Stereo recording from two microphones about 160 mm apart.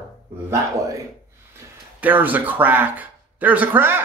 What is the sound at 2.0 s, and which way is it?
Speech, 10° right (ahead or behind).